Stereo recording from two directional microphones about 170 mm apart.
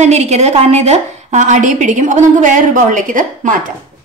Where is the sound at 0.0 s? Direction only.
40° right (ahead or behind).